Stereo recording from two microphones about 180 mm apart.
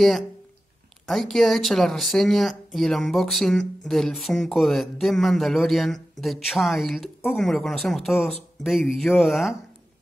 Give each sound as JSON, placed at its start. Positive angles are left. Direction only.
{"t": 1.0, "sound": "speech", "side_deg": 0}